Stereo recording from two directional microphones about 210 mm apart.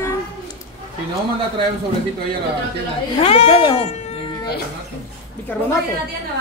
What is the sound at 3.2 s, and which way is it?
Speech, 30° left (ahead or behind).